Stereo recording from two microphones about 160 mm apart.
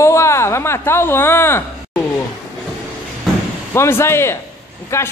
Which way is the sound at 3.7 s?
15° left (ahead or behind).